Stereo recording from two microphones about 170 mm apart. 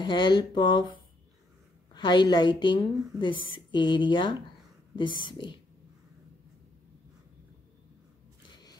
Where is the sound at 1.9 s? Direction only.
25° left (ahead or behind).